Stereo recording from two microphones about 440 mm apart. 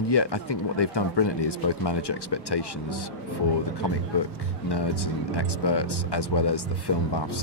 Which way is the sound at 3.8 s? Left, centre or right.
Left.